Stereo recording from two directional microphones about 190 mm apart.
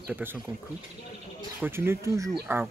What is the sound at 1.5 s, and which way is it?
Speech, 10° right (ahead or behind).